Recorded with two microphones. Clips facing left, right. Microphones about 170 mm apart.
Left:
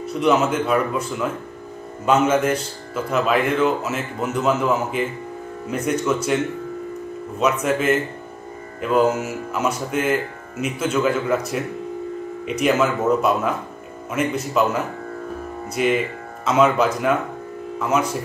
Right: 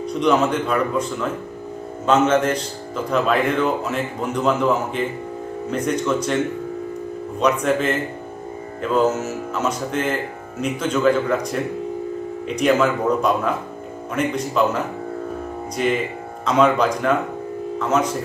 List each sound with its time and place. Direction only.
0.0 s speech: 5° left (ahead or behind)
2.0 s a man's voice: 10° left (ahead or behind)
7.3 s a man's voice: 5° left (ahead or behind)
8.9 s speech: 10° left (ahead or behind)
12.5 s a man's voice: 5° left (ahead or behind)
16.4 s a man's voice: 5° left (ahead or behind)